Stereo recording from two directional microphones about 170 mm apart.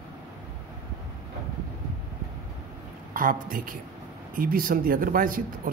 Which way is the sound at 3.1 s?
55° right (ahead or behind).